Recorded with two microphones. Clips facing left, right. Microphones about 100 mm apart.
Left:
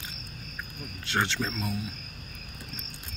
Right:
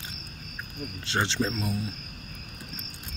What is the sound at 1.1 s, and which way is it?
Speech, 25° right (ahead or behind).